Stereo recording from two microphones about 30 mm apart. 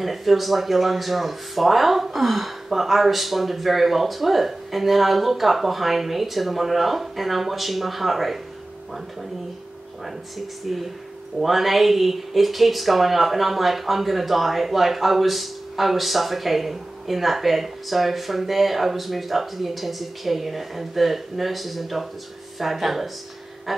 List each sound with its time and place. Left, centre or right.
0.0 s speech: centre
10.7 s speech: centre